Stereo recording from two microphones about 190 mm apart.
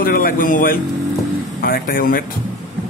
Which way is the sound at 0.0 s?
50° left (ahead or behind).